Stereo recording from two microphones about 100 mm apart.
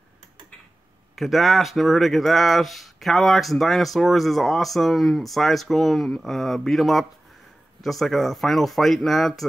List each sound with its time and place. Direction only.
1.1 s speech: centre (ahead or behind)